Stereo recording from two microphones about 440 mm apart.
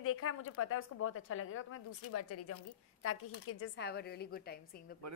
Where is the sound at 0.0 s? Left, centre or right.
Left.